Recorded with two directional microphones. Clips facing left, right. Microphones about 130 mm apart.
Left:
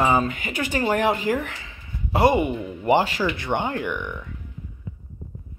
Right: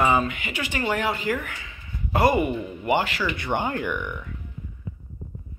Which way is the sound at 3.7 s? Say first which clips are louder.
Even; centre (ahead or behind).